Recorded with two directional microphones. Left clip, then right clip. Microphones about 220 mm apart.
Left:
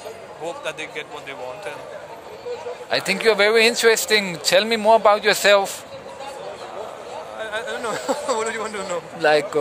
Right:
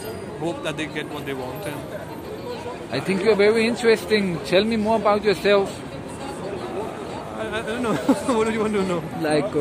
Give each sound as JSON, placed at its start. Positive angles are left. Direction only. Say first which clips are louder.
{"t": 0.5, "sound": "speech", "louder": "right 1 dB", "side_deg": 10}
{"t": 2.9, "sound": "speech", "louder": "left 2 dB", "side_deg": 55}
{"t": 7.3, "sound": "speech", "louder": "even", "side_deg": 10}
{"t": 9.2, "sound": "speech", "louder": "left 5 dB", "side_deg": 55}